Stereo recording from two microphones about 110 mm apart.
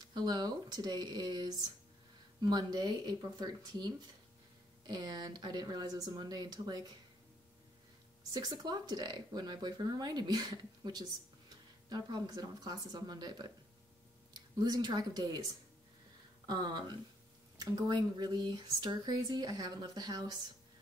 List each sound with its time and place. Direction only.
0.0 s speech: 40° right (ahead or behind)
8.3 s speech: 40° right (ahead or behind)
16.4 s speech: 40° right (ahead or behind)